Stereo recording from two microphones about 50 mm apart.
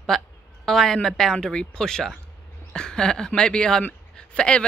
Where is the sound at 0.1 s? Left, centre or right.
Centre.